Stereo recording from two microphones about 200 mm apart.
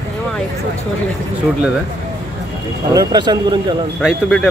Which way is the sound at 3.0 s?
20° right (ahead or behind).